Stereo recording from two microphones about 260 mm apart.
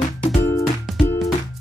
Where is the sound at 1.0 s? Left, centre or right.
Centre.